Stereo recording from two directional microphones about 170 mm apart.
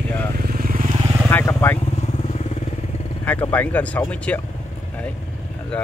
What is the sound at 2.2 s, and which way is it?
Vehicle, 40° left (ahead or behind).